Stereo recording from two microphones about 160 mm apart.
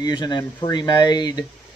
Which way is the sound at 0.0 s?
25° left (ahead or behind).